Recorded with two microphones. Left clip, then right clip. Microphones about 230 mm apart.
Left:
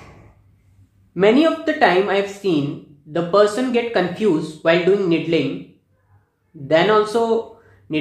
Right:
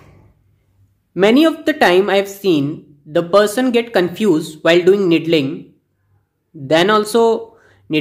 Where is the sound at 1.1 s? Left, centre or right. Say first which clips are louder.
Right 3 dB; right.